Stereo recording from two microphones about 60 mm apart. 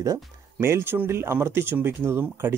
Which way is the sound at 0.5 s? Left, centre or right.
Right.